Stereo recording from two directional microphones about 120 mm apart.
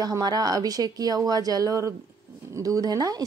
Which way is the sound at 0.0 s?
30° right (ahead or behind).